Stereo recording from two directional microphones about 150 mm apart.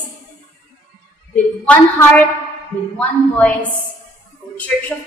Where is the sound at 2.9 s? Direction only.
10° left (ahead or behind).